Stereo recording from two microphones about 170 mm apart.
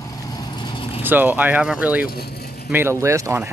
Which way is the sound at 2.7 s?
15° right (ahead or behind).